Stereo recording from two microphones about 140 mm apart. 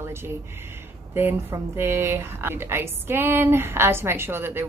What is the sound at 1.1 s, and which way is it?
A woman's voice, 15° right (ahead or behind).